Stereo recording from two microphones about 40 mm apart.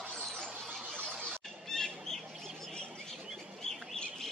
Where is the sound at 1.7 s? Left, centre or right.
Centre.